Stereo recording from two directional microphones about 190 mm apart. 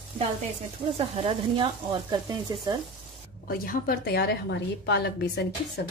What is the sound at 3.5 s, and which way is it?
A woman's voice, 50° left (ahead or behind).